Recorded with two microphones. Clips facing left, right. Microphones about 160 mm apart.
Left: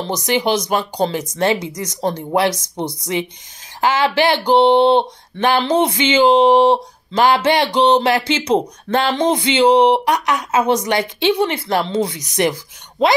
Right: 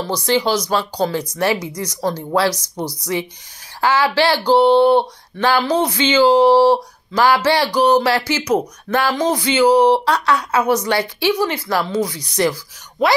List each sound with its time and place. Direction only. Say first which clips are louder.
0.0 s speech: right 1 dB; 20° left (ahead or behind)